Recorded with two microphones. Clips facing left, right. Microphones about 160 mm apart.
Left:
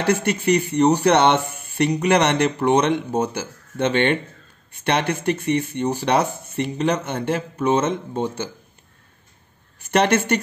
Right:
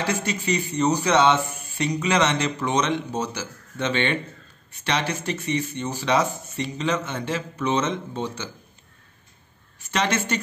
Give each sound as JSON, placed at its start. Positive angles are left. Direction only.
{"t": 0.0, "sound": "a man's voice", "side_deg": 60}
{"t": 9.8, "sound": "a man's voice", "side_deg": 55}